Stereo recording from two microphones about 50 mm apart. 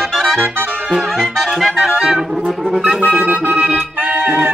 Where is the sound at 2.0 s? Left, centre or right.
Centre.